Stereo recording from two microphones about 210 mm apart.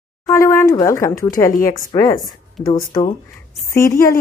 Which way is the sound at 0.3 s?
10° left (ahead or behind).